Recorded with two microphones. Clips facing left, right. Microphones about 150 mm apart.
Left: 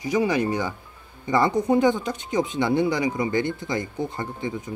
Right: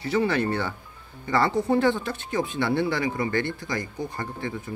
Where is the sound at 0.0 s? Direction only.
15° left (ahead or behind).